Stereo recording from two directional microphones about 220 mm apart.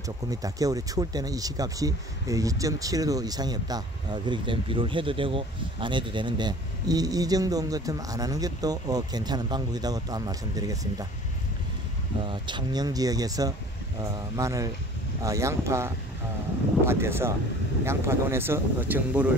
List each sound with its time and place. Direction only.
0.3 s speech: 15° right (ahead or behind)
12.3 s speech: 20° right (ahead or behind)